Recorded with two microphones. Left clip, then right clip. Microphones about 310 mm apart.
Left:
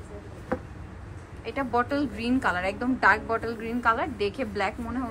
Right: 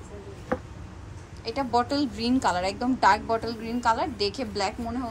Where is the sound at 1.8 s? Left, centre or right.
Right.